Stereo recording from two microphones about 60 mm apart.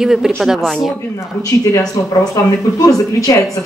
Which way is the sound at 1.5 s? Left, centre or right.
Left.